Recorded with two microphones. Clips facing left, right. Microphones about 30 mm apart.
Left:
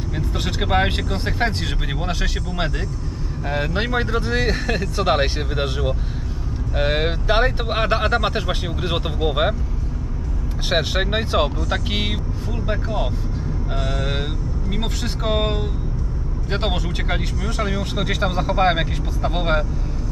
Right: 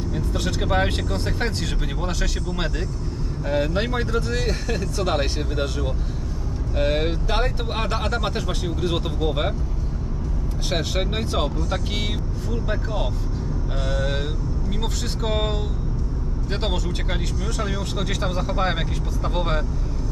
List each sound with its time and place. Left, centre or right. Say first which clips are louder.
0.1 s speech: left 2 dB; left
10.7 s speech: left 5 dB; left
12.6 s speech: left 5 dB; centre